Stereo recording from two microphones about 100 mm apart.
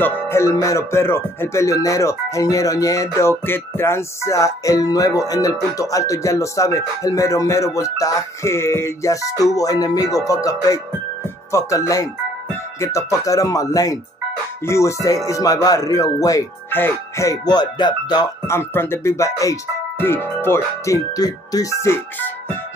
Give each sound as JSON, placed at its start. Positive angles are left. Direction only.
{"t": 0.0, "sound": "music", "side_deg": 25}
{"t": 16.7, "sound": "speech", "side_deg": 20}
{"t": 17.3, "sound": "music", "side_deg": 45}
{"t": 18.5, "sound": "speech", "side_deg": 25}